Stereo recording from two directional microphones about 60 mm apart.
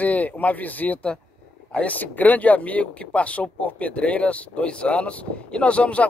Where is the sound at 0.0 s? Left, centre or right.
Left.